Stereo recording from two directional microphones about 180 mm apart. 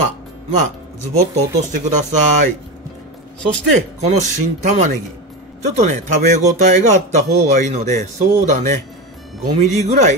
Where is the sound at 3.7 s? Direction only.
40° right (ahead or behind).